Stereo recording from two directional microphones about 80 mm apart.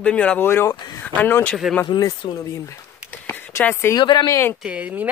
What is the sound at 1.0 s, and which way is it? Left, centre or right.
Speech, centre.